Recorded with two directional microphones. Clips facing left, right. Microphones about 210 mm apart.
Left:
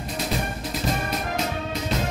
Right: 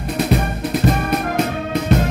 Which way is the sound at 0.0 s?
60° right (ahead or behind).